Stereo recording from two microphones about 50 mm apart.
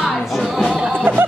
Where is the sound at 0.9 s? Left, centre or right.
Right.